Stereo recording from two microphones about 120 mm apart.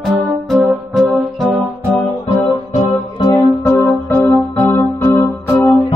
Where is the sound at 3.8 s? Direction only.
25° left (ahead or behind).